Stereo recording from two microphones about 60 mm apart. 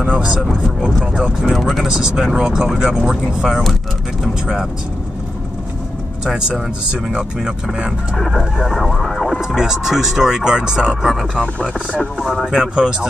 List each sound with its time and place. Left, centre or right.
1.4 s speech: centre
1.9 s speech: centre
4.2 s speech: centre
6.2 s speech: centre
8.2 s speech: centre
9.6 s speech: centre
11.6 s speech: centre
12.2 s speech: centre